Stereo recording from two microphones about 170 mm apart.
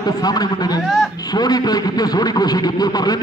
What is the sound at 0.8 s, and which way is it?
Speech, centre (ahead or behind).